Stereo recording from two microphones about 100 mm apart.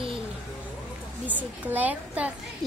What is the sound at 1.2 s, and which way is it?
A woman's voice, 15° right (ahead or behind).